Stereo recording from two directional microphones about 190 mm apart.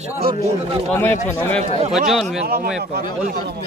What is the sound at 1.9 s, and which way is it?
Speech, centre (ahead or behind).